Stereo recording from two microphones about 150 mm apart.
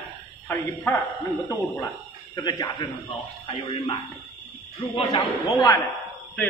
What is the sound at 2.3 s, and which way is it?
Speech, 25° left (ahead or behind).